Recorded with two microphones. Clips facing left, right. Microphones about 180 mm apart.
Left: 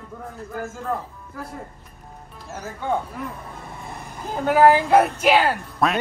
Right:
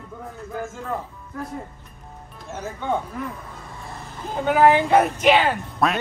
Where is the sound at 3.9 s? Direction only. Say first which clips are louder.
Left 1 dB; 15° left (ahead or behind).